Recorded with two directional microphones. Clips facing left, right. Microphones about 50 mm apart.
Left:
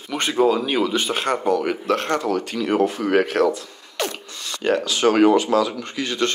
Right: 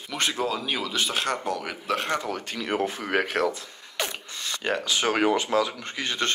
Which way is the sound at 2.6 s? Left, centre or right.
Left.